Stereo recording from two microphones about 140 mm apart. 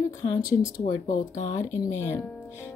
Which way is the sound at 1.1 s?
70° left (ahead or behind).